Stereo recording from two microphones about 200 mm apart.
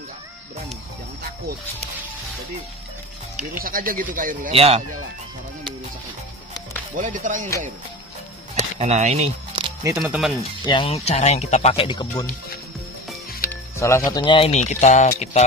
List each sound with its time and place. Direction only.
3.3 s speech: 45° right (ahead or behind)
4.6 s speech: 30° right (ahead or behind)
7.0 s speech: 40° right (ahead or behind)
8.5 s a sound: 35° right (ahead or behind)
10.0 s speech: 5° right (ahead or behind)
10.6 s speech: 25° left (ahead or behind)
13.5 s music: 15° left (ahead or behind)
14.1 s speech: 25° left (ahead or behind)